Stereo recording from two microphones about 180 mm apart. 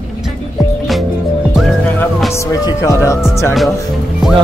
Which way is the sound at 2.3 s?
15° left (ahead or behind).